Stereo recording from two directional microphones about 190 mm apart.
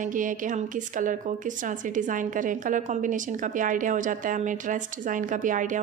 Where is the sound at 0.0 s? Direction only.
45° right (ahead or behind).